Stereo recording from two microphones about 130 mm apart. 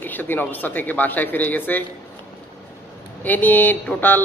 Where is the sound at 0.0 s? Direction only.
15° left (ahead or behind).